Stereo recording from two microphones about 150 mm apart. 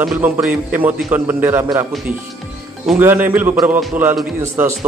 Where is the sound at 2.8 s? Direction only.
15° right (ahead or behind).